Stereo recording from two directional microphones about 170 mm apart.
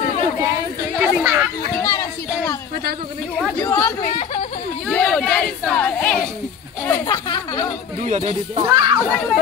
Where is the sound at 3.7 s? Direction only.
20° left (ahead or behind).